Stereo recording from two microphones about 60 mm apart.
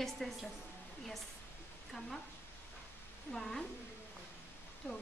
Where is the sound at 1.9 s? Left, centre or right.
Centre.